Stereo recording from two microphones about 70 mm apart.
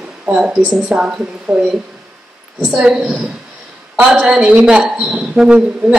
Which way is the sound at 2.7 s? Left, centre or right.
Centre.